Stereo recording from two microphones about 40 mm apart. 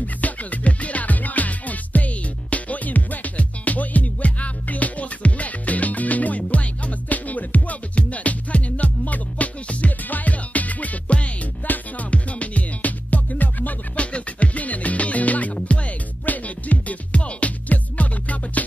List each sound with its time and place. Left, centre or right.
0.0 s music: left
11.6 s music: left
12.1 s music: left
14.1 s music: left